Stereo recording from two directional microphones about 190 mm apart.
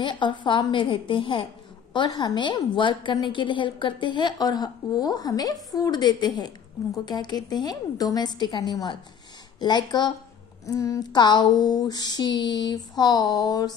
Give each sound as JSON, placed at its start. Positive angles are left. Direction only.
{"t": 0.0, "sound": "a woman's voice", "side_deg": 25}